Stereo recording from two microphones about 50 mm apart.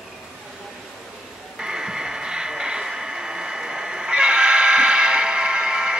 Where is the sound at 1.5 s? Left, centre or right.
Centre.